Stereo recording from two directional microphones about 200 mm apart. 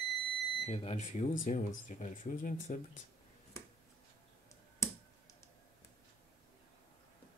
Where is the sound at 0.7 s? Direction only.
30° left (ahead or behind).